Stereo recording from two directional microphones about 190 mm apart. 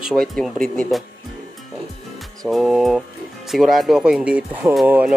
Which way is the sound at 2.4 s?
Centre (ahead or behind).